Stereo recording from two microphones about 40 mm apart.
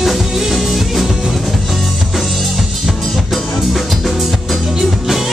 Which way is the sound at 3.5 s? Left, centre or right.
Centre.